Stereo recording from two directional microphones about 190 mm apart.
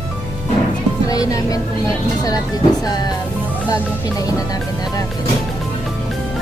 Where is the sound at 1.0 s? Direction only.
20° left (ahead or behind).